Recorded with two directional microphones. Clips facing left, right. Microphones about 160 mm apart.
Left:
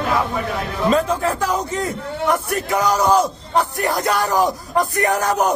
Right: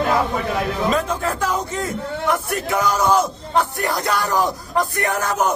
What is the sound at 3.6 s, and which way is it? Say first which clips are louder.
Speech: left 1 dB; centre (ahead or behind).